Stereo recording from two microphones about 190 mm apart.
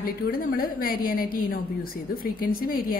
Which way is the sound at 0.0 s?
50° left (ahead or behind).